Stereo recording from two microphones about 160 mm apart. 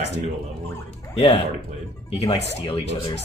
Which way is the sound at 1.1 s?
40° left (ahead or behind).